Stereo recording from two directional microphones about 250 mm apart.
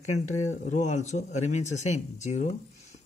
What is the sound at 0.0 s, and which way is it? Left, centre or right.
Speech, left.